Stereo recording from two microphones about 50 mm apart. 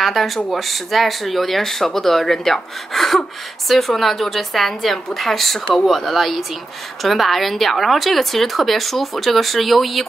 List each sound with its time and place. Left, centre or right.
0.0 s speech: centre